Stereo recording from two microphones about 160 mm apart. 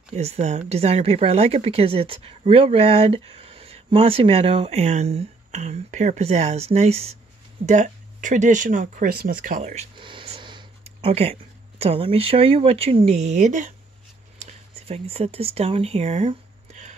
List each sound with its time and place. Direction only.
0.1 s speech: 45° right (ahead or behind)
7.6 s speech: 50° right (ahead or behind)
9.9 s a sound: 30° right (ahead or behind)
11.8 s speech: 35° right (ahead or behind)